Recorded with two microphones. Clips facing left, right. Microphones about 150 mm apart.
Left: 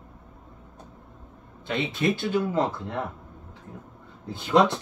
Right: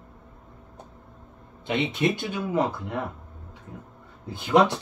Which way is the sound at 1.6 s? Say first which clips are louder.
Right 1 dB; 20° right (ahead or behind).